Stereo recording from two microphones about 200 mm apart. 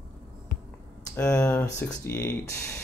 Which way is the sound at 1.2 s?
10° left (ahead or behind).